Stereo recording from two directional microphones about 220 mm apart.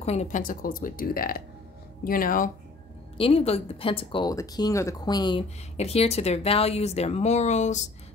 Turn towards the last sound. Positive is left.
turn(degrees=30)  # may be behind; listen again after turning